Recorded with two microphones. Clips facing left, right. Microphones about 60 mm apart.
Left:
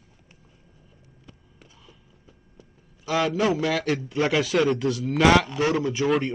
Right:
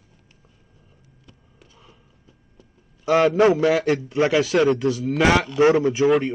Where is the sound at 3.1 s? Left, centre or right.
Right.